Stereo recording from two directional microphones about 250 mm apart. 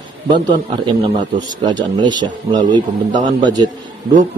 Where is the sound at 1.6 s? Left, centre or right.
Centre.